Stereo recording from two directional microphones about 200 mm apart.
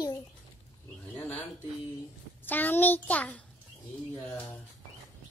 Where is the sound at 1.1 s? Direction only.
5° left (ahead or behind).